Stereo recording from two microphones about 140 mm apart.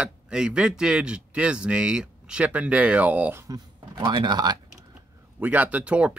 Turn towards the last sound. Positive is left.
turn(degrees=-10)  # may be behind; listen again after turning